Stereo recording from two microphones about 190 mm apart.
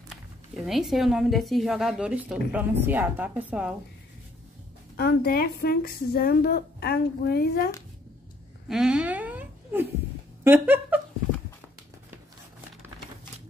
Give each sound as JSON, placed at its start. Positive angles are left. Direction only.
{"t": 0.6, "sound": "a woman's voice", "side_deg": 0}
{"t": 4.9, "sound": "speech", "side_deg": 55}
{"t": 8.6, "sound": "a sound", "side_deg": -5}
{"t": 10.4, "sound": "speech", "side_deg": -10}